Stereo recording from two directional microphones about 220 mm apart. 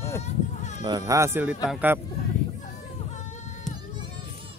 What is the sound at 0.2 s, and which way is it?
Sheep, 30° left (ahead or behind).